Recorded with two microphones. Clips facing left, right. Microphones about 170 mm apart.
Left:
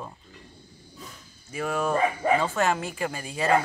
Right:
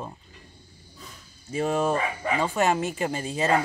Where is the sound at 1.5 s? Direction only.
25° right (ahead or behind).